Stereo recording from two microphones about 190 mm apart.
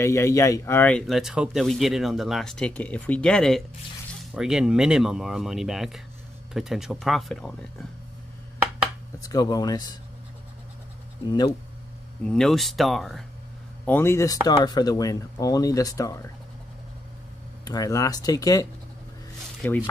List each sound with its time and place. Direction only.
0.0 s speech: 15° left (ahead or behind)
9.2 s speech: 20° left (ahead or behind)
12.3 s speech: centre (ahead or behind)
13.8 s speech: 10° left (ahead or behind)
17.6 s speech: 20° left (ahead or behind)
19.6 s rub: 10° left (ahead or behind)